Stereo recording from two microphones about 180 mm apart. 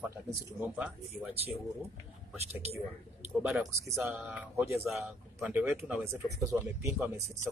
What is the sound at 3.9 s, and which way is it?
Speech, 15° right (ahead or behind).